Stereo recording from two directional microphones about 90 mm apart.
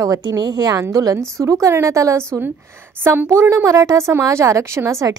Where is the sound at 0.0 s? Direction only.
40° right (ahead or behind).